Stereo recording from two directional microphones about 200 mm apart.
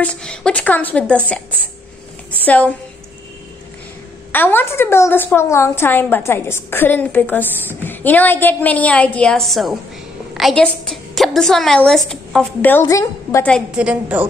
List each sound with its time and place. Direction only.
0.0 s a woman's voice: 5° left (ahead or behind)
2.4 s a woman's voice: 5° left (ahead or behind)
4.3 s a woman's voice: 10° left (ahead or behind); by 14.2 s 5° right (ahead or behind)